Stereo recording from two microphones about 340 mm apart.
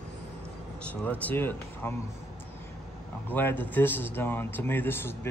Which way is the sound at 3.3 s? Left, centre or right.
Centre.